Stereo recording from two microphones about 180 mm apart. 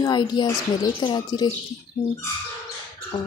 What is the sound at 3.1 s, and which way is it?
Speech, 25° left (ahead or behind).